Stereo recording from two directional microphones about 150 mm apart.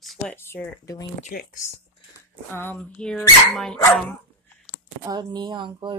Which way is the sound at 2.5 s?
15° left (ahead or behind).